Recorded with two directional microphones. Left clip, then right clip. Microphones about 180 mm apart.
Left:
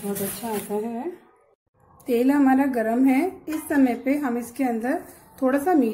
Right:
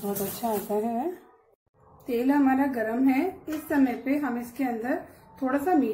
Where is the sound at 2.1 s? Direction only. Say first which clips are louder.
Left 4 dB; 40° left (ahead or behind).